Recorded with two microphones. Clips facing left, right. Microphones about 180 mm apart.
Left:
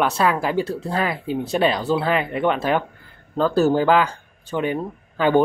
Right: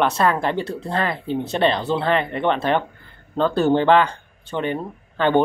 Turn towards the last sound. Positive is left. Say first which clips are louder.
# left 1 dB
turn(degrees=10)  # may be behind; listen again after turning